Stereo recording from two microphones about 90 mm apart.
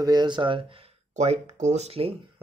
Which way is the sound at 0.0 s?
50° right (ahead or behind).